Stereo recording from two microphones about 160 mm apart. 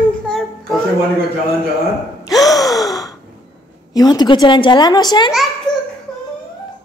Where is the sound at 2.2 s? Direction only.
20° left (ahead or behind).